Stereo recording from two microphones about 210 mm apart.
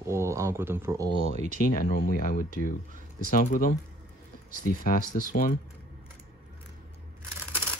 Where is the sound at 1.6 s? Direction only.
40° left (ahead or behind).